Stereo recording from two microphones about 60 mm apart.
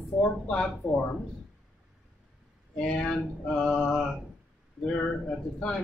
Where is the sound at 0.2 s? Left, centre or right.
Centre.